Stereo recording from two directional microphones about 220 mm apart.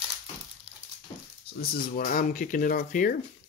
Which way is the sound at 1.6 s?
40° left (ahead or behind).